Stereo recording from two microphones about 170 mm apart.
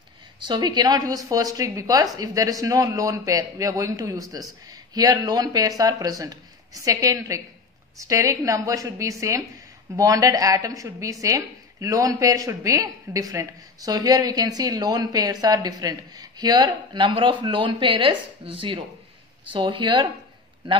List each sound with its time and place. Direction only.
0.5 s a woman's voice: 25° right (ahead or behind)